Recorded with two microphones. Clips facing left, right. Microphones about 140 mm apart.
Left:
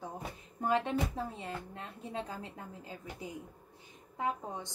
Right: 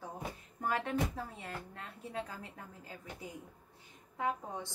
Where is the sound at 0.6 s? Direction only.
20° left (ahead or behind).